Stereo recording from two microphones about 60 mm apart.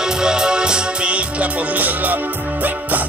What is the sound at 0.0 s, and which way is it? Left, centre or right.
Music, centre.